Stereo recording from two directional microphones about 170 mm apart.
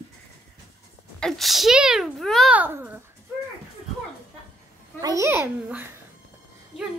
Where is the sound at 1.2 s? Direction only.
Centre (ahead or behind).